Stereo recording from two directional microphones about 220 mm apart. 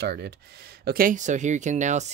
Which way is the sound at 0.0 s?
50° right (ahead or behind).